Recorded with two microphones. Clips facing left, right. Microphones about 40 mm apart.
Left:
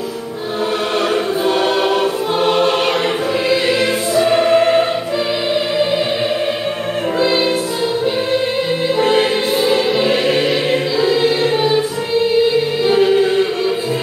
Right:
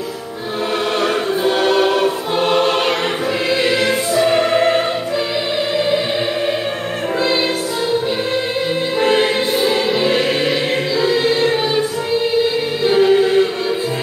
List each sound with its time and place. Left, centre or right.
1.4 s choir: centre
4.1 s choir: centre
9.0 s music: centre
11.0 s choir: centre
12.8 s music: centre